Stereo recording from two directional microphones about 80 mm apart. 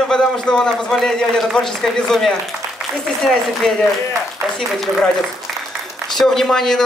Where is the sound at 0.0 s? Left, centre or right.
Centre.